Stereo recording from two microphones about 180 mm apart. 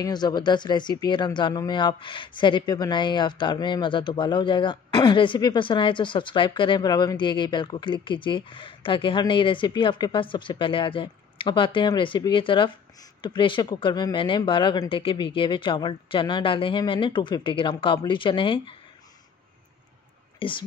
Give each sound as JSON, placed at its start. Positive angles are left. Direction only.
{"t": 0.0, "sound": "speech", "side_deg": 25}
{"t": 20.3, "sound": "speech", "side_deg": 30}